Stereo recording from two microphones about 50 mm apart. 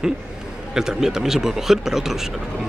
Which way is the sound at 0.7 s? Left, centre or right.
Centre.